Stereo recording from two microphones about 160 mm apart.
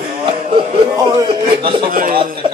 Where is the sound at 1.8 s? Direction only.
65° right (ahead or behind).